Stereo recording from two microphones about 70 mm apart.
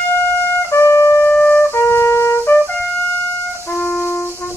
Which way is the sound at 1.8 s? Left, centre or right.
Left.